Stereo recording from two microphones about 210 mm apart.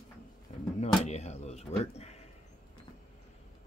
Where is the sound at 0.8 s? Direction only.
30° left (ahead or behind).